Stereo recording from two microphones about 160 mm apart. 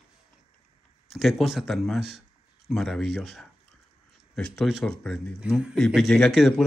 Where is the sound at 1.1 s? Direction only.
Centre (ahead or behind).